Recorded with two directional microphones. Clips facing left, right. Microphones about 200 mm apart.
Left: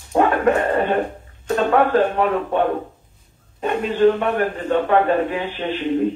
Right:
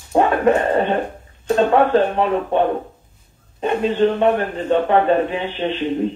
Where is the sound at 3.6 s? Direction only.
25° right (ahead or behind).